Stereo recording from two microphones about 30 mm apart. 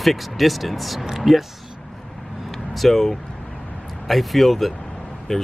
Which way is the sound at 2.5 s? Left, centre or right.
Centre.